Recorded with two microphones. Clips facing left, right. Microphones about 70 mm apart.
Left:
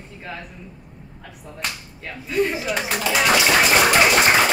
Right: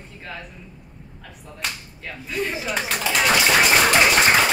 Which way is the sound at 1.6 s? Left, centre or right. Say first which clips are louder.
Left 1 dB; centre.